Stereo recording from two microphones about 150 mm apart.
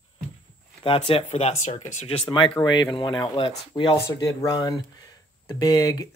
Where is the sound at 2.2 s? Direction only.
30° left (ahead or behind).